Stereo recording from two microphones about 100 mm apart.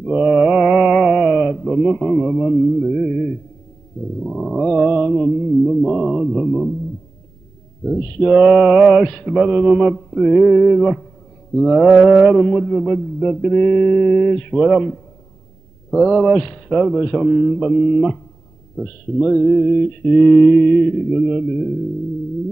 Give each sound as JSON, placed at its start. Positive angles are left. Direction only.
{"t": 0.0, "sound": "mantra", "side_deg": 0}
{"t": 7.8, "sound": "mantra", "side_deg": 0}